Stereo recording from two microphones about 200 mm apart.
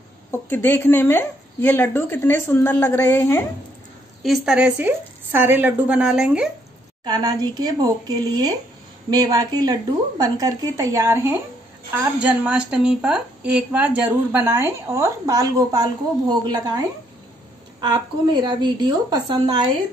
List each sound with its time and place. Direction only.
0.3 s speech: 10° left (ahead or behind)
4.2 s a woman's voice: centre (ahead or behind)
7.1 s a woman's voice: 20° right (ahead or behind)